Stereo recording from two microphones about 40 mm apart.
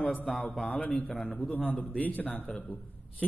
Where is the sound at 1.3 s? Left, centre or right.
Left.